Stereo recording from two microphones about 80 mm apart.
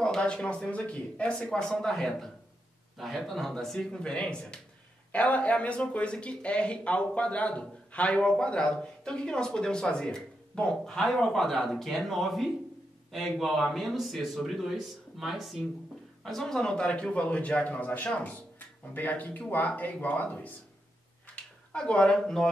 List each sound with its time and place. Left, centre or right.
0.0 s a man's voice: centre